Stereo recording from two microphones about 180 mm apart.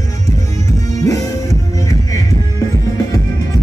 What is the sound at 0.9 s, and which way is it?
Music, 20° left (ahead or behind).